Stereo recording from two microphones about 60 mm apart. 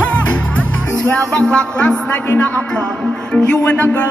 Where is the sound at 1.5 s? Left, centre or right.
Centre.